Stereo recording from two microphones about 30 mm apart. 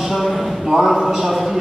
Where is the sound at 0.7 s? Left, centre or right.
Centre.